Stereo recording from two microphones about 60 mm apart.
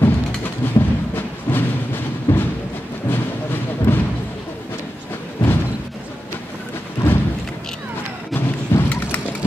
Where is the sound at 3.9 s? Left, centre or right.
Left.